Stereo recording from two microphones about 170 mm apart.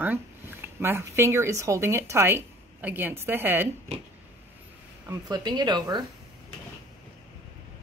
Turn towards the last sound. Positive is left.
turn(degrees=-25)  # may be behind; listen again after turning